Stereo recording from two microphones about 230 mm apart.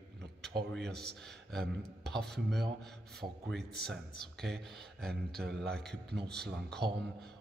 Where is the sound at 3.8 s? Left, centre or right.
Centre.